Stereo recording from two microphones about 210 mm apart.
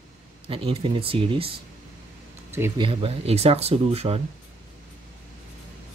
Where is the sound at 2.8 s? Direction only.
25° right (ahead or behind).